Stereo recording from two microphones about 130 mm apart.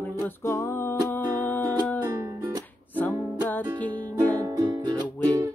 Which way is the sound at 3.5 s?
10° left (ahead or behind).